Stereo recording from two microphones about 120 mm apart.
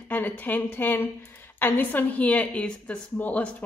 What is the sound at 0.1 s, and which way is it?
A woman's voice, 15° left (ahead or behind).